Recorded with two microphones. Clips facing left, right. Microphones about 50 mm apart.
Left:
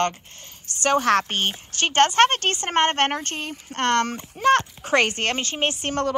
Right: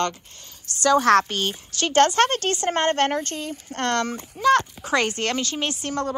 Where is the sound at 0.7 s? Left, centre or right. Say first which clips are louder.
Right 2 dB; left.